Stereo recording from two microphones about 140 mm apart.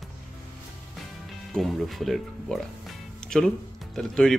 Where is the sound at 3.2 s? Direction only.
5° left (ahead or behind).